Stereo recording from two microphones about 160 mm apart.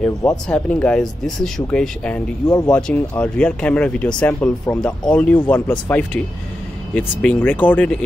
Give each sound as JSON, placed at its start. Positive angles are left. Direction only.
{"t": 0.5, "sound": "speech", "side_deg": 10}
{"t": 2.4, "sound": "speech", "side_deg": 25}
{"t": 2.7, "sound": "speech", "side_deg": 10}